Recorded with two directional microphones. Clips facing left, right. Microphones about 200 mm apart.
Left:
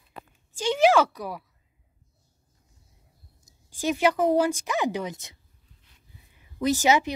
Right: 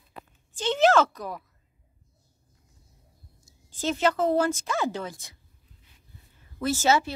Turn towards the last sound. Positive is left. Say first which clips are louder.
# left 2 dB
turn(degrees=15)  # may be behind; listen again after turning